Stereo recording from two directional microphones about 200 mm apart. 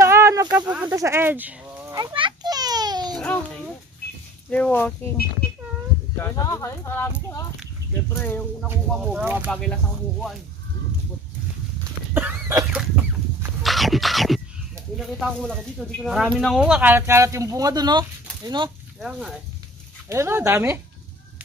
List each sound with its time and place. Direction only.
0.0 s a sound: 15° right (ahead or behind)
0.8 s children playing: 15° right (ahead or behind)
4.5 s speech: 5° left (ahead or behind)
6.1 s speech: 15° left (ahead or behind)
8.8 s speech: 5° right (ahead or behind)
9.5 s speech: 5° left (ahead or behind)
12.1 s cough: 10° right (ahead or behind)
15.0 s speech: centre (ahead or behind); by 18.7 s 20° right (ahead or behind)
18.9 s speech: centre (ahead or behind)
20.1 s speech: 15° right (ahead or behind)